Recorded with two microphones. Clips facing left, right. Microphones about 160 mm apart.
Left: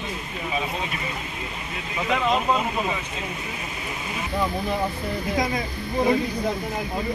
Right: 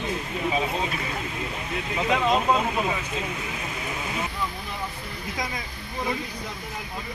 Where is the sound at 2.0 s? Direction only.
15° right (ahead or behind).